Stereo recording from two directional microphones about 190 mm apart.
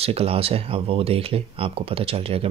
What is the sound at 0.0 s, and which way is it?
Speech, 30° right (ahead or behind).